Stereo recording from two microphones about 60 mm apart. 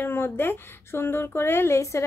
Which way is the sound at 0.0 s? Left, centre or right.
Left.